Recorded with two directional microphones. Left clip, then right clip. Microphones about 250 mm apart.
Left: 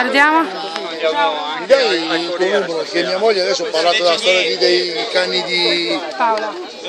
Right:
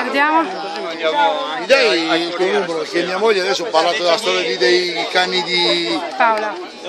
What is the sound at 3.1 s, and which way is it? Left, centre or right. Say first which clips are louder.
Speech: left 1 dB; right.